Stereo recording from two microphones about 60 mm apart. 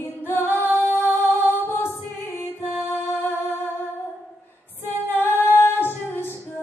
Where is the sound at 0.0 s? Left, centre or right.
Left.